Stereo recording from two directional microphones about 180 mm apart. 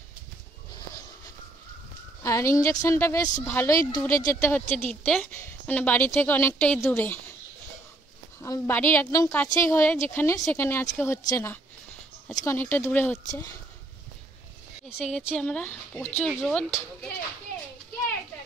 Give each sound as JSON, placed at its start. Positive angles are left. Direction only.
{"t": 2.2, "sound": "a woman's voice", "side_deg": 15}
{"t": 4.6, "sound": "a woman's voice", "side_deg": 5}
{"t": 8.4, "sound": "a woman's voice", "side_deg": 15}
{"t": 15.0, "sound": "speech", "side_deg": 0}